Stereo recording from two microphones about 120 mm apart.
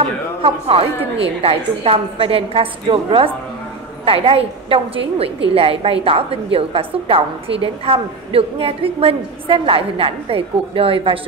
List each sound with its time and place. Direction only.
0.0 s a woman's voice: 55° right (ahead or behind)